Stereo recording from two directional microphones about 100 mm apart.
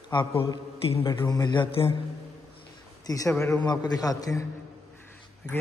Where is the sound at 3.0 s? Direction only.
35° left (ahead or behind).